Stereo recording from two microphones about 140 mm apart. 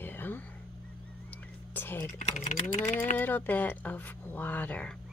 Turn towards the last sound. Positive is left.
turn(degrees=10)  # may be behind; listen again after turning